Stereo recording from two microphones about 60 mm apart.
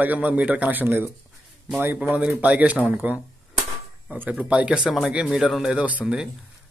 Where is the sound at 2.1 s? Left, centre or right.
Right.